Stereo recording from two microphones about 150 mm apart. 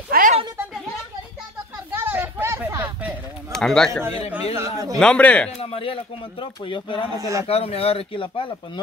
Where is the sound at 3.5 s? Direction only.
5° left (ahead or behind).